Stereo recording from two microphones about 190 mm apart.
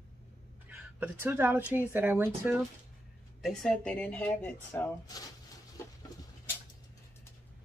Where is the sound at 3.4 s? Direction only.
Centre (ahead or behind).